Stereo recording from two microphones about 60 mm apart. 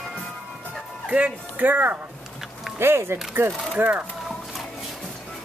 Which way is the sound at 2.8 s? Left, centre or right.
Right.